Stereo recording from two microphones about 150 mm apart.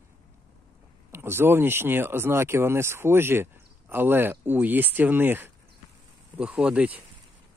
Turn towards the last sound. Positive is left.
turn(degrees=-10)  # may be behind; listen again after turning